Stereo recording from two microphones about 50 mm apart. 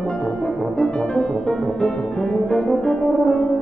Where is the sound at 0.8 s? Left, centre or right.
Centre.